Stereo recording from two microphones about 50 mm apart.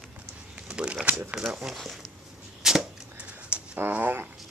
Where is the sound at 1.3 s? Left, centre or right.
Centre.